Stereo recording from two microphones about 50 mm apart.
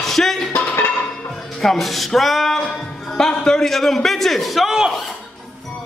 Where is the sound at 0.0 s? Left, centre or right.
Centre.